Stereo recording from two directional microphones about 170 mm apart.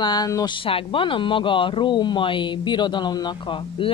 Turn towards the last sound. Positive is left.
turn(degrees=30)  # may be behind; listen again after turning